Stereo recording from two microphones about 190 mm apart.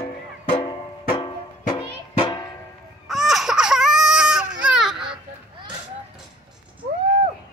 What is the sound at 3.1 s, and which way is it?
Baby cry, centre (ahead or behind).